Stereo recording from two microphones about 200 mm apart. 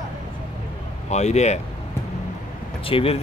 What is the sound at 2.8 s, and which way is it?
Speech, 30° left (ahead or behind).